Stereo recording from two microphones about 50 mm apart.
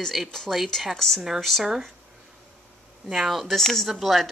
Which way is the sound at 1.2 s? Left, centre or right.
Centre.